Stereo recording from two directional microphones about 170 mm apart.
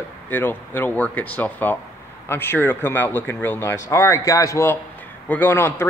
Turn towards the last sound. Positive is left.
turn(degrees=15)  # may be behind; listen again after turning